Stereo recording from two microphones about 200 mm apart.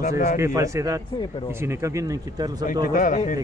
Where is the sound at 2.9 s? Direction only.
40° left (ahead or behind).